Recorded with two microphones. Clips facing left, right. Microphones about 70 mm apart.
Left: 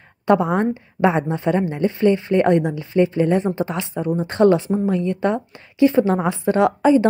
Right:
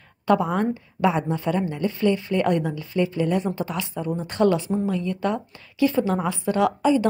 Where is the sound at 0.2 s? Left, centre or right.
Left.